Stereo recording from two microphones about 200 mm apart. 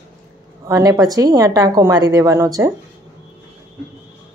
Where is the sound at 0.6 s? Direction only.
15° right (ahead or behind).